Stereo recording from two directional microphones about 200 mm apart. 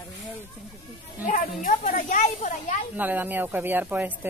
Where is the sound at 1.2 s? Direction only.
40° left (ahead or behind).